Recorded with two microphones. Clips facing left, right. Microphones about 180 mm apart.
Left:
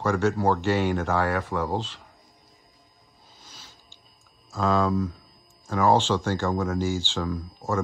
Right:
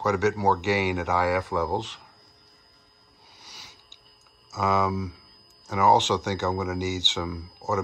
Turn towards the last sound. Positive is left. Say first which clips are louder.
# left 2 dB
turn(degrees=-10)  # may be behind; listen again after turning